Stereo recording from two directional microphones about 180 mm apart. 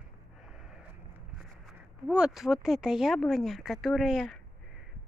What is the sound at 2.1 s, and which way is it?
Speech, 5° right (ahead or behind).